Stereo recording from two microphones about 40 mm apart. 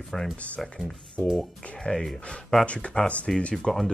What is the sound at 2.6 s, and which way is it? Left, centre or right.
Speech, left.